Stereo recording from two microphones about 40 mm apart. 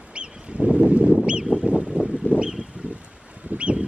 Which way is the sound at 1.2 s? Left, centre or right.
Right.